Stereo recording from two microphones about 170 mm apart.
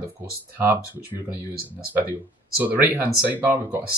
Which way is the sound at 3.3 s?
10° right (ahead or behind).